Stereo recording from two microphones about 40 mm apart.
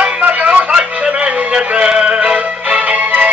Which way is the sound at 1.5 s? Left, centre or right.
Right.